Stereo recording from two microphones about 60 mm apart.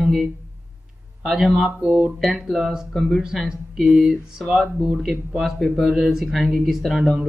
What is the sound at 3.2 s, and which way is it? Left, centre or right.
Speech, centre.